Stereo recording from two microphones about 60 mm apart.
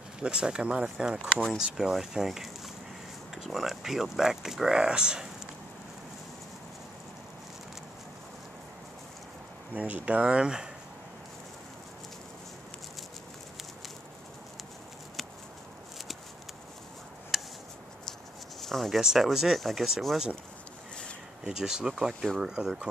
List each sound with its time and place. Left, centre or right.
0.2 s speech: centre
9.8 s speech: right
17.3 s a sound: centre
18.6 s speech: centre
21.5 s speech: centre